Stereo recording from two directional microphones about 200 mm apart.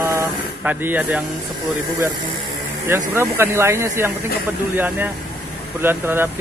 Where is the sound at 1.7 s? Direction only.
15° right (ahead or behind).